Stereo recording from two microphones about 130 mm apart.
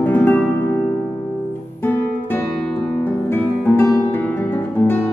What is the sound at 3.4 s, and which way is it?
Music, 15° left (ahead or behind).